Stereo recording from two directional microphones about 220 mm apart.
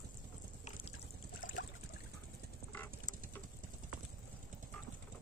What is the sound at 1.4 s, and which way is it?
Trickle, 35° left (ahead or behind).